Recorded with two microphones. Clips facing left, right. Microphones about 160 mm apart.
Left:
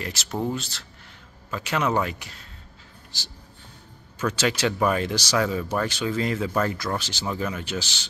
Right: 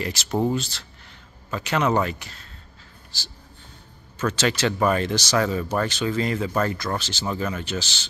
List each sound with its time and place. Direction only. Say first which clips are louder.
0.0 s speech: right 5 dB; centre (ahead or behind)